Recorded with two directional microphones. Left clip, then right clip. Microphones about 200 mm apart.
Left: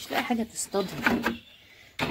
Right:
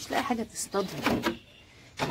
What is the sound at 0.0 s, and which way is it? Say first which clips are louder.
A woman's voice: left 1 dB; centre (ahead or behind).